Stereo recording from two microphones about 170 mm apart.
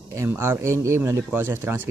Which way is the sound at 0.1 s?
15° right (ahead or behind).